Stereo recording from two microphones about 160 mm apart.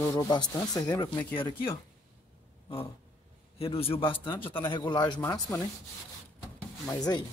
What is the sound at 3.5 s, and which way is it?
A man's voice, 35° left (ahead or behind).